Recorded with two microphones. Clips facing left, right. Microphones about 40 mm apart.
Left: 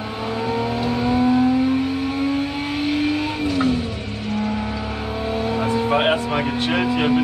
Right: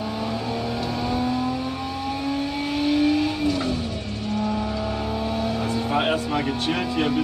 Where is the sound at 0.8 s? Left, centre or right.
Left.